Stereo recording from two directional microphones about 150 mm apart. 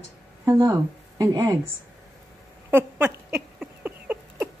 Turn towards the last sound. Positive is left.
turn(degrees=-10)  # may be behind; listen again after turning